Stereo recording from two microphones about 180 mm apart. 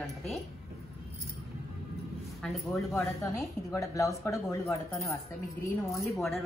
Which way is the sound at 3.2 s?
15° left (ahead or behind).